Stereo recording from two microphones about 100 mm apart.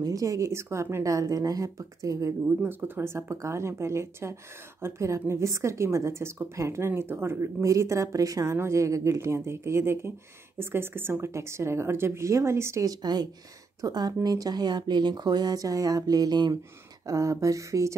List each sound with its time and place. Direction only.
0.0 s speech: 35° right (ahead or behind)
2.6 s a woman's voice: 20° right (ahead or behind)
12.8 s speech: 45° right (ahead or behind)
17.0 s speech: 35° right (ahead or behind)